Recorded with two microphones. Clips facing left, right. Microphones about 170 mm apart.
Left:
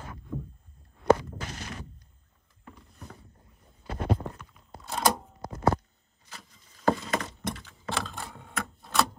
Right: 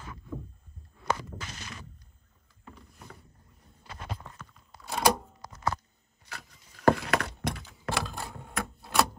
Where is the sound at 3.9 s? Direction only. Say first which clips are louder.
Left 12 dB; 40° left (ahead or behind).